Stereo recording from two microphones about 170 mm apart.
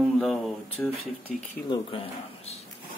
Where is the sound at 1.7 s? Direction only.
30° left (ahead or behind).